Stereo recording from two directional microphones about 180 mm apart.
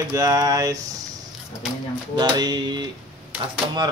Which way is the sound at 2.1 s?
25° right (ahead or behind).